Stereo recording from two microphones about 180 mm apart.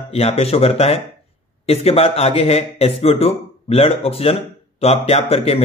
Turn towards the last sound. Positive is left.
turn(degrees=35)  # may be behind; listen again after turning